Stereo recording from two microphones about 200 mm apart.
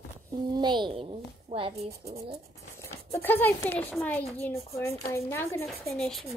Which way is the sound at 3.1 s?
10° left (ahead or behind).